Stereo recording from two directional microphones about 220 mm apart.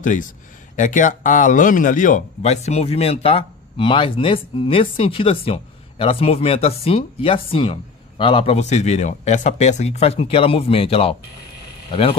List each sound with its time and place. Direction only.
0.0 s speech: 35° left (ahead or behind)